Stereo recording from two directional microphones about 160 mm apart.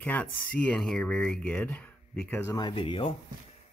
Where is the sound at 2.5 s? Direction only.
30° left (ahead or behind).